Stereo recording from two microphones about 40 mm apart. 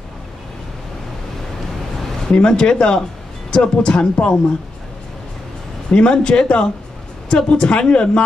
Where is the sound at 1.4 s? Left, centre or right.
Centre.